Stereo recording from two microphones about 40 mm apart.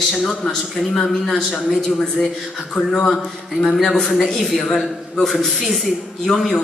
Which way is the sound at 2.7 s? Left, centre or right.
Centre.